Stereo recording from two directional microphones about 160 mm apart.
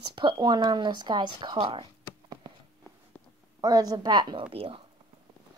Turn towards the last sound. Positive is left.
turn(degrees=-35)  # may be behind; listen again after turning